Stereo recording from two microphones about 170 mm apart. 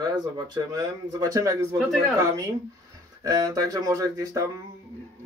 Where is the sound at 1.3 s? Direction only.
20° right (ahead or behind).